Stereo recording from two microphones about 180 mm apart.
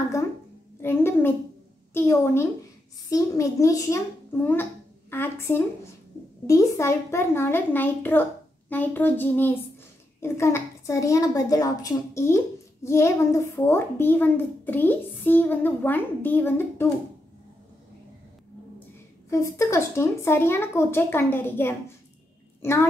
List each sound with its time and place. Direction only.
0.8 s a child's voice: 10° left (ahead or behind)
19.3 s a child's voice: 15° left (ahead or behind)